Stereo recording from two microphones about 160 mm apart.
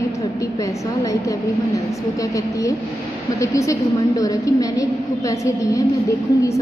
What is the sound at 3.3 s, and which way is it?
A woman's voice, 20° left (ahead or behind).